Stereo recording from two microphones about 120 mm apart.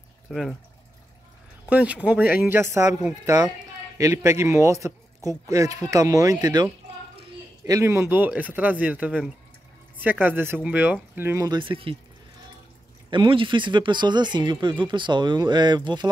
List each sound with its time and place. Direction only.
0.3 s speech: centre (ahead or behind)
1.7 s speech: 10° right (ahead or behind)
4.0 s speech: 25° right (ahead or behind)
11.4 s speech: 40° right (ahead or behind)
13.1 s speech: 45° right (ahead or behind)